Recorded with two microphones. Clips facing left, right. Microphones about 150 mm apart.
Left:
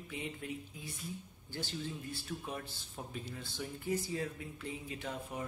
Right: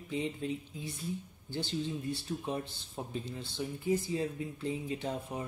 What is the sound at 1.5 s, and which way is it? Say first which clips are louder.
Speech: right 6 dB; 25° right (ahead or behind).